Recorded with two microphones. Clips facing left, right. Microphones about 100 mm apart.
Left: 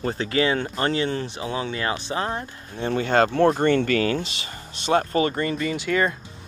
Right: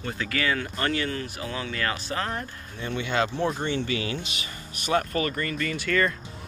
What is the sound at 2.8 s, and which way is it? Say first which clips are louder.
Speech: left 7 dB; 45° left (ahead or behind).